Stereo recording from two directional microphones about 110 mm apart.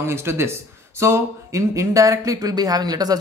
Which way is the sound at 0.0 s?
25° right (ahead or behind).